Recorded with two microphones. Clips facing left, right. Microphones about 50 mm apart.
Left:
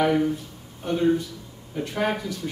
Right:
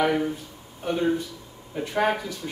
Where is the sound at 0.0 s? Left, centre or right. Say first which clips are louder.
Left 2 dB; centre.